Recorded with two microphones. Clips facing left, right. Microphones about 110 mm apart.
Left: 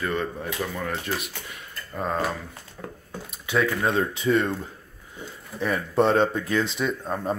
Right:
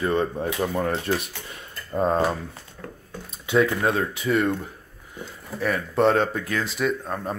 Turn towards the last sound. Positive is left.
turn(degrees=0)  # may be behind; listen again after turning